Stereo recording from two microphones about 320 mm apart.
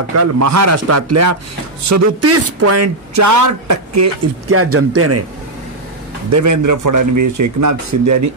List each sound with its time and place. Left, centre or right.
0.1 s a man's voice: right
6.3 s speech: right